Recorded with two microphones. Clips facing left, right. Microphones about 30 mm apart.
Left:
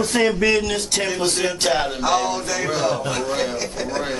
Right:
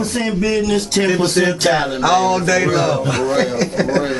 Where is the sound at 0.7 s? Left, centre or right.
Centre.